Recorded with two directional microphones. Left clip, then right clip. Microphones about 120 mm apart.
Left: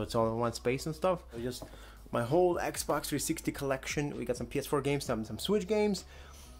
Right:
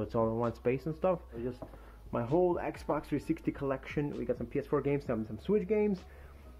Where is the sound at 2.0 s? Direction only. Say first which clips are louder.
Left 2 dB; 35° left (ahead or behind).